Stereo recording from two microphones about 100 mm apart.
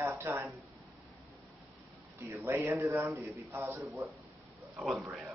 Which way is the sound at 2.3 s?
25° right (ahead or behind).